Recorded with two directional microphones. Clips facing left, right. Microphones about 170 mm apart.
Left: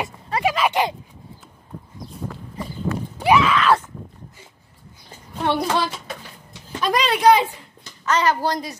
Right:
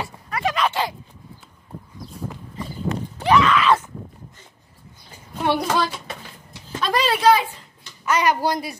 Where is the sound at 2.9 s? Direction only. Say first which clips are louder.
Even; 15° right (ahead or behind).